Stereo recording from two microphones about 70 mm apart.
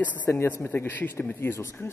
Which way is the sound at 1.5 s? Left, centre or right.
Left.